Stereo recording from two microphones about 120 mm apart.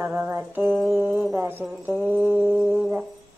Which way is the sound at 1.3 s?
20° right (ahead or behind).